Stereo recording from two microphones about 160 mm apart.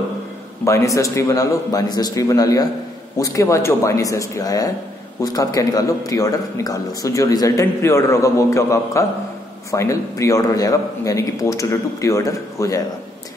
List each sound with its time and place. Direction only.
0.7 s a man's voice: 20° left (ahead or behind)